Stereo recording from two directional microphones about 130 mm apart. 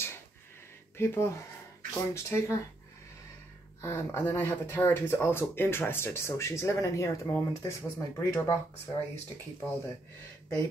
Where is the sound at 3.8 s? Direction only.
20° left (ahead or behind).